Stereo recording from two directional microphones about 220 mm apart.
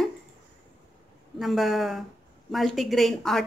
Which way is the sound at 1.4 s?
Centre (ahead or behind).